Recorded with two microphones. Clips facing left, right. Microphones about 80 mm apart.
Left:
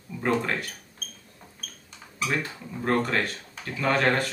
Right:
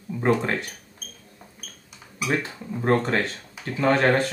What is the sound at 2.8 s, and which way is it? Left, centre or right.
Speech, right.